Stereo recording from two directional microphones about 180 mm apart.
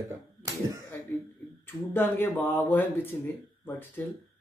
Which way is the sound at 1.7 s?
10° left (ahead or behind).